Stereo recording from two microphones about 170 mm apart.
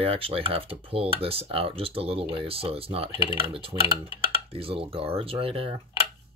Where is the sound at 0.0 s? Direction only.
35° right (ahead or behind).